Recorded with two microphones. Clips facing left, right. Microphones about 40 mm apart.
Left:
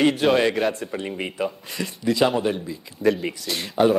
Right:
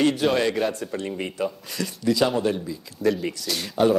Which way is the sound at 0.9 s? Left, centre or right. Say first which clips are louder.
Left 1 dB; left.